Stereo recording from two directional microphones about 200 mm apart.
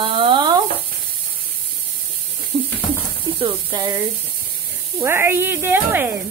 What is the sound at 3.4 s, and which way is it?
Speech, 25° right (ahead or behind).